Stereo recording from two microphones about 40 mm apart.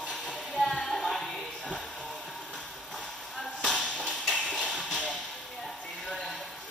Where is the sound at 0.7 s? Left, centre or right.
Centre.